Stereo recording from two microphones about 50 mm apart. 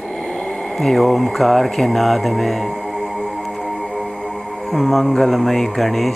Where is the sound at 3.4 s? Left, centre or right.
Centre.